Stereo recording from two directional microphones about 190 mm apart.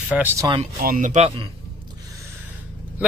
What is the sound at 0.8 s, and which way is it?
Speech, 45° right (ahead or behind).